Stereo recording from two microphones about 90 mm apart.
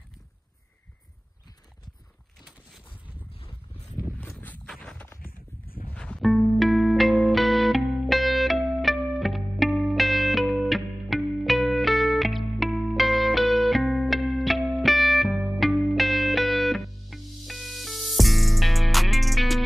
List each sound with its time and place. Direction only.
4.3 s walk: 20° left (ahead or behind)
4.7 s a sound: 15° left (ahead or behind)
5.9 s music: 10° left (ahead or behind)
6.2 s music: centre (ahead or behind)